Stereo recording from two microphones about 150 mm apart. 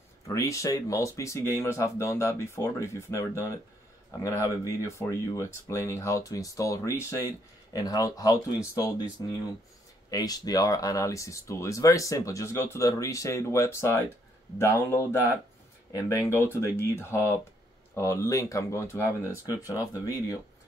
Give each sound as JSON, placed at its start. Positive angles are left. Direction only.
{"t": 0.3, "sound": "speech", "side_deg": 20}
{"t": 10.1, "sound": "speech", "side_deg": 25}